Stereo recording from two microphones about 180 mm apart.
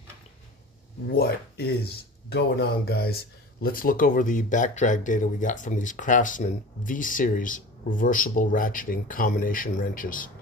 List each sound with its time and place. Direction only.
1.0 s speech: 60° left (ahead or behind)